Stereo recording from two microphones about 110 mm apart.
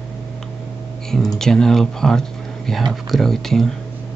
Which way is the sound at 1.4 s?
5° left (ahead or behind).